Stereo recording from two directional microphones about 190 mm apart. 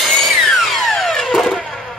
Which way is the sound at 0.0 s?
Centre (ahead or behind).